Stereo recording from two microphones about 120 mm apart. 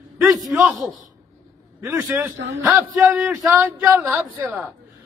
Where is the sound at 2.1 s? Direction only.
15° right (ahead or behind).